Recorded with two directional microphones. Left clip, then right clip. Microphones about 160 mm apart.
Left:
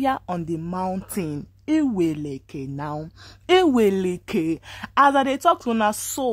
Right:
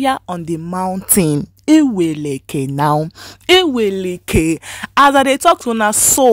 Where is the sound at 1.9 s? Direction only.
15° right (ahead or behind).